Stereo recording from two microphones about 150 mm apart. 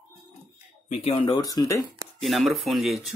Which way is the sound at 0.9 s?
40° left (ahead or behind).